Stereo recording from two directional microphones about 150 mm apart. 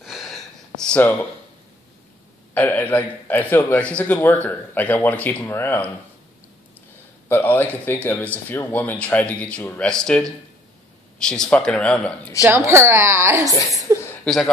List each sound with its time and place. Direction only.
0.0 s a sound: centre (ahead or behind)
0.8 s a man's voice: 10° left (ahead or behind)
2.5 s a man's voice: 10° left (ahead or behind)
7.2 s a man's voice: 10° left (ahead or behind)
12.4 s a woman's voice: 15° right (ahead or behind)
13.5 s a woman's voice: 20° left (ahead or behind)